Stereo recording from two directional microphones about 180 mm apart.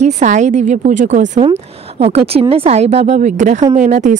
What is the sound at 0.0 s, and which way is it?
A woman's voice, 40° right (ahead or behind).